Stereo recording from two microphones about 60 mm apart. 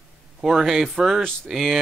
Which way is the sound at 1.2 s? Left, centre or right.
Centre.